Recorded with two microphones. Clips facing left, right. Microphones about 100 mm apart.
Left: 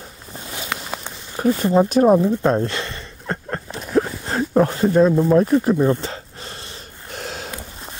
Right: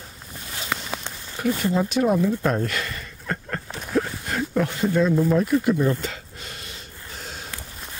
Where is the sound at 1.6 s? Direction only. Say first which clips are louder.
Left 8 dB; 35° left (ahead or behind).